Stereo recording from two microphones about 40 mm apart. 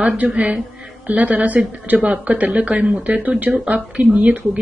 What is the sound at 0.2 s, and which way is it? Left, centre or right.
Speech, right.